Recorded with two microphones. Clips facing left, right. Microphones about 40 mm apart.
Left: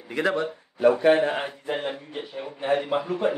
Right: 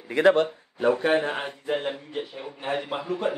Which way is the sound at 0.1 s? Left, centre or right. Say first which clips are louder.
Right 6 dB; right.